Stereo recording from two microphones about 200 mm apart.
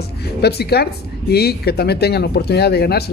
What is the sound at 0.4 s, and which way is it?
Speech, 55° left (ahead or behind).